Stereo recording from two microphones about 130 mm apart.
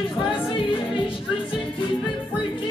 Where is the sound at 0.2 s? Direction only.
40° left (ahead or behind).